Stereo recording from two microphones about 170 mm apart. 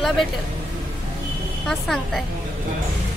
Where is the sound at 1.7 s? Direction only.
Centre (ahead or behind).